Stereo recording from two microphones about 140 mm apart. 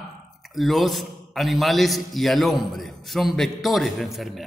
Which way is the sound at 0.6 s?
Centre (ahead or behind).